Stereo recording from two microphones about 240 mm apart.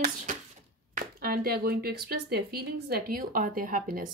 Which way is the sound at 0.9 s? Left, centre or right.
Right.